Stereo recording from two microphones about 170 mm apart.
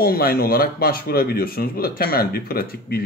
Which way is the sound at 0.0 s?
60° left (ahead or behind).